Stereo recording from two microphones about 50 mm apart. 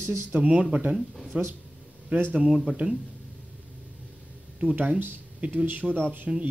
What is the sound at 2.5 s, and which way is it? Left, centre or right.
Speech, centre.